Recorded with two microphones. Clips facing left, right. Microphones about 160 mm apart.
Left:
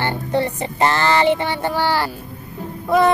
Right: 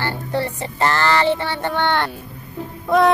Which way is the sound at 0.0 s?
20° left (ahead or behind).